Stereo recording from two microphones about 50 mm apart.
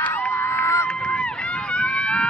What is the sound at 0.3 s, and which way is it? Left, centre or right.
Run, left.